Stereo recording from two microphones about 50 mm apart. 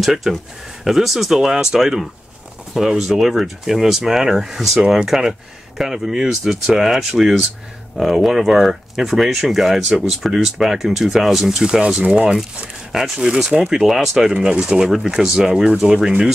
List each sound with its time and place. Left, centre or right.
0.0 s speech: centre; by 12.4 s right
12.9 s speech: centre